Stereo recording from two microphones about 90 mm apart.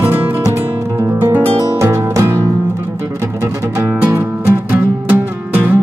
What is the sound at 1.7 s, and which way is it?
Music, 30° right (ahead or behind).